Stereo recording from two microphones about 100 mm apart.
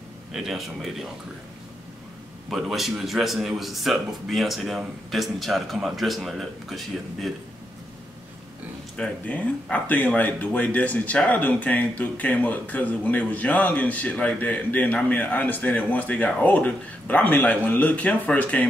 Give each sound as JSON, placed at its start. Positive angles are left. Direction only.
{"t": 0.3, "sound": "speech", "side_deg": -5}
{"t": 2.5, "sound": "speech", "side_deg": 0}
{"t": 8.9, "sound": "speech", "side_deg": 10}